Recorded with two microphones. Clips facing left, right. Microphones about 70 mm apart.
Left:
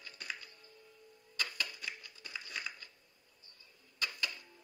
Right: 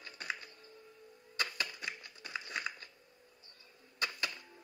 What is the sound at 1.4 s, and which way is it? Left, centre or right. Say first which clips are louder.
Typewriter: right 2 dB; right.